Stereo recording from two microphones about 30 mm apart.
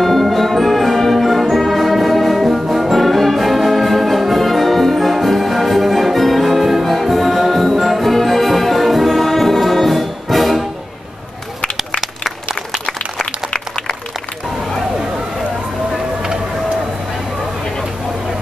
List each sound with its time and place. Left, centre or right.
0.0 s music: centre
13.5 s applause: left